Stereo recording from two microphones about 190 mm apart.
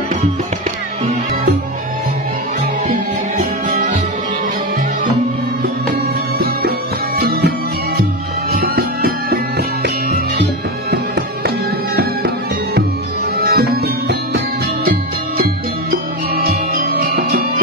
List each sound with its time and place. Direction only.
3.3 s music: 40° right (ahead or behind)
6.3 s music: 55° right (ahead or behind)
10.9 s music: 55° right (ahead or behind)
13.5 s music: 60° right (ahead or behind)